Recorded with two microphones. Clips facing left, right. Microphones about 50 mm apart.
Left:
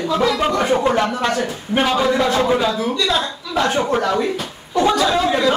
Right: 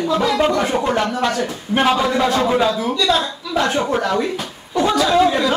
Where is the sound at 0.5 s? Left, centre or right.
Centre.